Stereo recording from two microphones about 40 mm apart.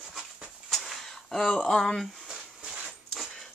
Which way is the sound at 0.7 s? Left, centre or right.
Centre.